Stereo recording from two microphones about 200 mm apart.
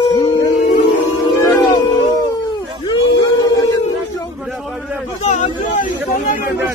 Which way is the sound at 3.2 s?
20° left (ahead or behind).